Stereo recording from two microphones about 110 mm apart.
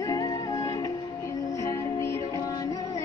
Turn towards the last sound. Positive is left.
turn(degrees=30)  # may be behind; listen again after turning